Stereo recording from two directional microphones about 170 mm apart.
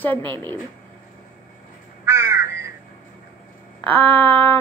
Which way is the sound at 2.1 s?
15° right (ahead or behind).